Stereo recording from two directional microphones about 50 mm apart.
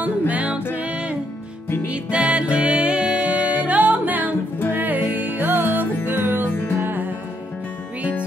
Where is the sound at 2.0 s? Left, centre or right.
Right.